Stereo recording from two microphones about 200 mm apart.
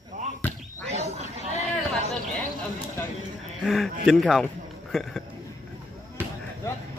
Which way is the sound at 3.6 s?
Centre (ahead or behind).